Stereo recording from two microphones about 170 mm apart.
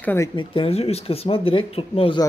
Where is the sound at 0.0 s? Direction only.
15° left (ahead or behind).